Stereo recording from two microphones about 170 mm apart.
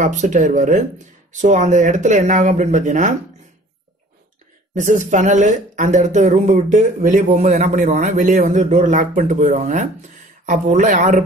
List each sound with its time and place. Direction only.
0.0 s speech: 45° right (ahead or behind)
4.7 s speech: 45° right (ahead or behind)